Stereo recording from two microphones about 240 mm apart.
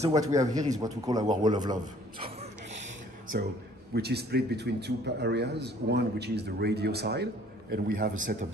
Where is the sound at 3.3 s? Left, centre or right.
Right.